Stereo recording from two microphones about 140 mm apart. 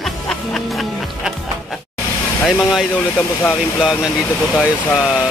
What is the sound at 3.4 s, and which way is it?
Speech, centre (ahead or behind).